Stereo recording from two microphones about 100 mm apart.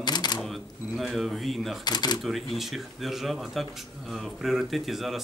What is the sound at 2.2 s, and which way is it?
Speech, centre (ahead or behind).